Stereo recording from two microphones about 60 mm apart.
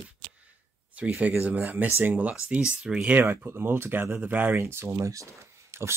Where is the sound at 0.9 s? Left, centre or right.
Right.